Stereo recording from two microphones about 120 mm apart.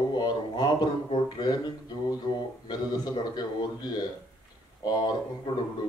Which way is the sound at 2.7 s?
35° left (ahead or behind).